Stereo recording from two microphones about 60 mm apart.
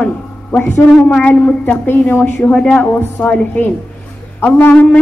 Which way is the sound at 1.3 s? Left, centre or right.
Left.